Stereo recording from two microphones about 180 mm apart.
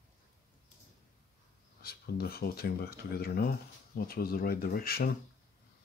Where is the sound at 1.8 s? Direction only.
60° left (ahead or behind).